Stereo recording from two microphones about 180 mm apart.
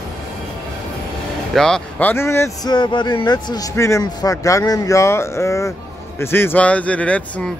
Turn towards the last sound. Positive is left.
turn(degrees=5)  # may be behind; listen again after turning